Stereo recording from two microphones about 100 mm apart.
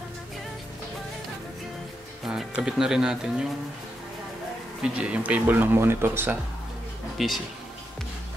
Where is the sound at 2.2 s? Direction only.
5° right (ahead or behind).